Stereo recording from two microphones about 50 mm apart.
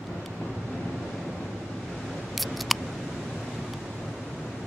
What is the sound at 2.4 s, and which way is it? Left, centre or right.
Scissors, centre.